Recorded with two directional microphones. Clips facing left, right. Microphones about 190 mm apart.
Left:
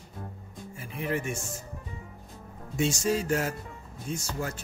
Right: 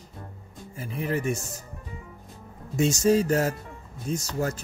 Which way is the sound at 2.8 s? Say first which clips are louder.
Right 6 dB; 40° right (ahead or behind).